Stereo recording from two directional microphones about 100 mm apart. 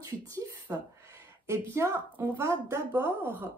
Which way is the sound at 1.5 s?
25° right (ahead or behind).